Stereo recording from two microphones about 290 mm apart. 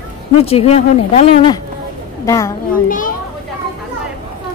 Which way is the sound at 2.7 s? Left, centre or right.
Left.